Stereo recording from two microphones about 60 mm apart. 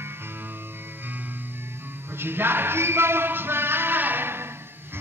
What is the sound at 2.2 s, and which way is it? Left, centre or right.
Speech, right.